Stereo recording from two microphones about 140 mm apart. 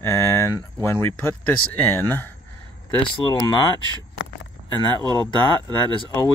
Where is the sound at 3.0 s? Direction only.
35° left (ahead or behind).